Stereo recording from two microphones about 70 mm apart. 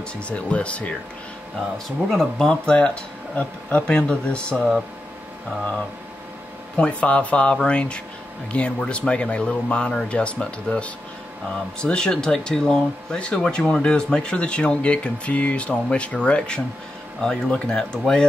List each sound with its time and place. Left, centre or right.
0.0 s speech: centre
2.0 s speech: centre
6.8 s speech: centre